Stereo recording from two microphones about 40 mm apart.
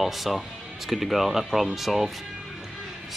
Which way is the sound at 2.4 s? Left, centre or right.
Centre.